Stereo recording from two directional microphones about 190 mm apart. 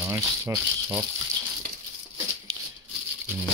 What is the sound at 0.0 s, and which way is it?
Speech, 10° right (ahead or behind).